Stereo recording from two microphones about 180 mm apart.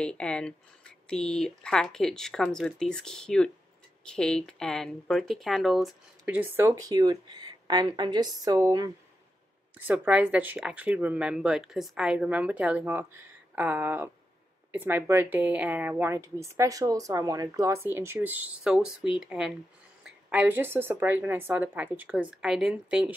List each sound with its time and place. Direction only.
0.0 s speech: 5° left (ahead or behind)
6.2 s speech: 10° right (ahead or behind)